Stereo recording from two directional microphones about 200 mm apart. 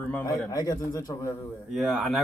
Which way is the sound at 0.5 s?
20° left (ahead or behind).